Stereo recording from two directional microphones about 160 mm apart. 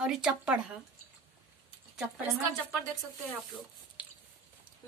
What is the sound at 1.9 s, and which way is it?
Speech, 5° right (ahead or behind).